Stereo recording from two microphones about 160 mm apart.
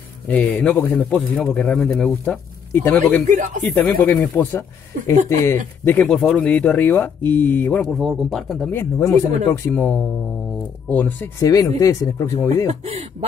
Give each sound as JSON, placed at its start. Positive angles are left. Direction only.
{"t": 0.3, "sound": "speech", "side_deg": 10}
{"t": 3.3, "sound": "speech", "side_deg": -50}
{"t": 3.6, "sound": "speech", "side_deg": 10}
{"t": 7.8, "sound": "speech", "side_deg": 0}
{"t": 8.7, "sound": "speech", "side_deg": 20}
{"t": 11.4, "sound": "speech", "side_deg": 20}